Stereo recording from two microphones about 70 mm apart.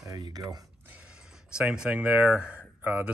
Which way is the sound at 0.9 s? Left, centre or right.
Centre.